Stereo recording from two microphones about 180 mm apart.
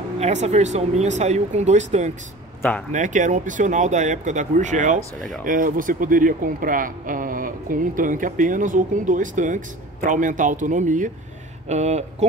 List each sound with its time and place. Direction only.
0.2 s speech: 40° right (ahead or behind)